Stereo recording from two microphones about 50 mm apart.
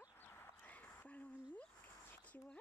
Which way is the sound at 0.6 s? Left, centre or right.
Left.